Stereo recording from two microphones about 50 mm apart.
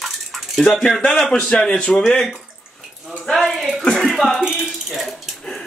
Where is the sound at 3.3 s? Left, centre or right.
Centre.